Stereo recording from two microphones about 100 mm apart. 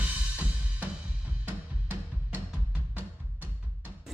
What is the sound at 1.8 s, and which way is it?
Music, 20° right (ahead or behind).